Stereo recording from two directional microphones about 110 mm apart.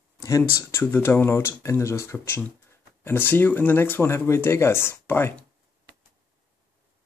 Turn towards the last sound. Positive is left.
turn(degrees=20)  # may be behind; listen again after turning